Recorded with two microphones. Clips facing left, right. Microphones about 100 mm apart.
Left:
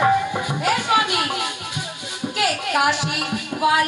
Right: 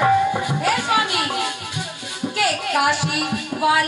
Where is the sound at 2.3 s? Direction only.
15° left (ahead or behind).